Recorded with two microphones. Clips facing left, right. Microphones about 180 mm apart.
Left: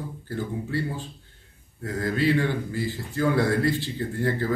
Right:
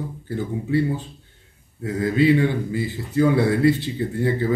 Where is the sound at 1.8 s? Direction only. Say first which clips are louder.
Right 6 dB; 20° right (ahead or behind).